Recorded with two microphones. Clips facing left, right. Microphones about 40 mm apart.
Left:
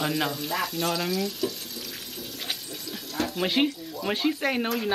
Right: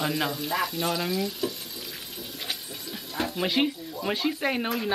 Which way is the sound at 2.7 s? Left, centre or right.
Centre.